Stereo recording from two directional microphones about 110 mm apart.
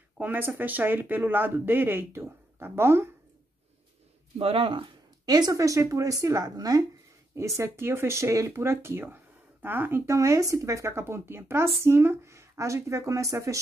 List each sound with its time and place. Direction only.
0.2 s speech: 15° right (ahead or behind)
4.4 s speech: 55° right (ahead or behind)
5.2 s speech: 35° right (ahead or behind)